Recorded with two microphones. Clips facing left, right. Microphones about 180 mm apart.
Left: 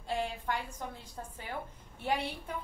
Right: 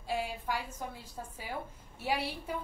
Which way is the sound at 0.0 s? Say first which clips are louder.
Even; 10° right (ahead or behind).